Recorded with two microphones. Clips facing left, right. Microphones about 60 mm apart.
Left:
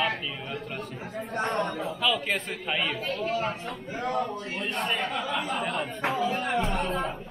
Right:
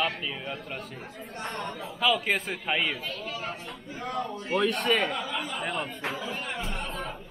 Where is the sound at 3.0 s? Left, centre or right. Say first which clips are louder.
Left 7 dB; left.